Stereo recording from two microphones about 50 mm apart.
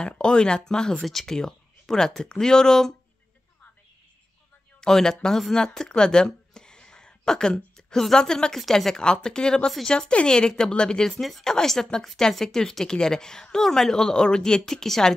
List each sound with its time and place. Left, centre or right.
0.0 s a woman's voice: centre
4.7 s a woman's voice: centre
11.1 s a woman's voice: centre